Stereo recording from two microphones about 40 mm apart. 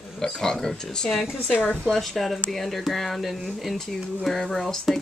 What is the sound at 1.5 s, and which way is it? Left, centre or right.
Speech, left.